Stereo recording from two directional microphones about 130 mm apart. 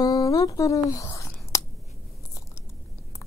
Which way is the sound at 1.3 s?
20° left (ahead or behind).